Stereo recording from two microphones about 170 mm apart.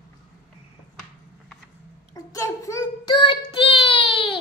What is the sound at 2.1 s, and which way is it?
Child singing, 20° left (ahead or behind).